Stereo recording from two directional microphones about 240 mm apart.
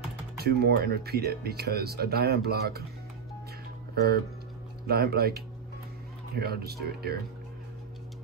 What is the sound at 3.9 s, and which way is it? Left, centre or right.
Speech, right.